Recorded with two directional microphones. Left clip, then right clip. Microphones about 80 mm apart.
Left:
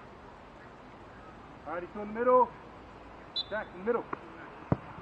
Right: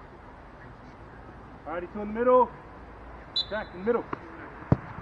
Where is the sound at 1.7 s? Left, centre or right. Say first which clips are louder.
Right 4 dB; centre.